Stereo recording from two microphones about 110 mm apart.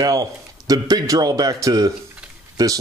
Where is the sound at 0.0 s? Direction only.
35° right (ahead or behind).